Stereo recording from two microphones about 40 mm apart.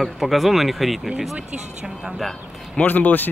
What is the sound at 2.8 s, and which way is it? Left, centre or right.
Speech, left.